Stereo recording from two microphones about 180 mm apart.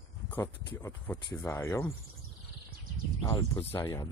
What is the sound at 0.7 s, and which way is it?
Speech, 25° left (ahead or behind).